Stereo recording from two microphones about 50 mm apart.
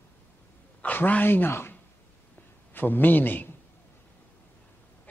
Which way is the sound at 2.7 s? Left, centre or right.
Left.